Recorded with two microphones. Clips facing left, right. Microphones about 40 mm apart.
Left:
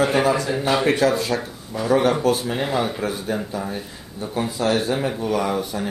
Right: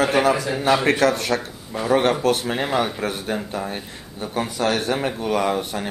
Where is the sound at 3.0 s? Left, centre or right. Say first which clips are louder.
Even; right.